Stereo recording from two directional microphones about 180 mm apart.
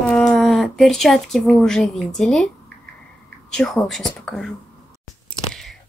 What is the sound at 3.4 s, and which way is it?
Speech, 5° left (ahead or behind).